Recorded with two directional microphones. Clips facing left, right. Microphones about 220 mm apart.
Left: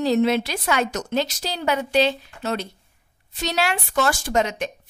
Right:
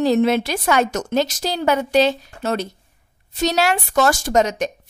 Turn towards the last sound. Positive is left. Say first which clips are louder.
# right 4 dB
turn(degrees=-45)  # may be behind; listen again after turning